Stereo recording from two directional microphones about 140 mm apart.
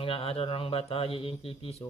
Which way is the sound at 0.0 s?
45° left (ahead or behind).